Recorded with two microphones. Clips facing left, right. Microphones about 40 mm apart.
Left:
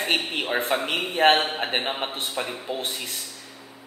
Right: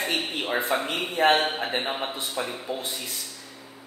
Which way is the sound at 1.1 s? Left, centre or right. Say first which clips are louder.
Left 2 dB; left.